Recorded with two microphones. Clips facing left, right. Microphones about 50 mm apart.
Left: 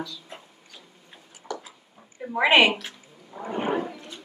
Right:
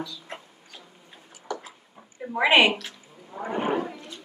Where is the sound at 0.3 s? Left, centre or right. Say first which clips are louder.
Right 4 dB; right.